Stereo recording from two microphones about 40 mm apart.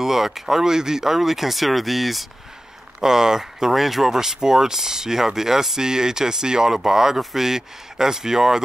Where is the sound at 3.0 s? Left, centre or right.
Centre.